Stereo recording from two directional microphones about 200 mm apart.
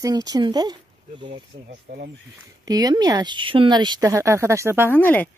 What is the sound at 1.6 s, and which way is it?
Speech, 50° right (ahead or behind).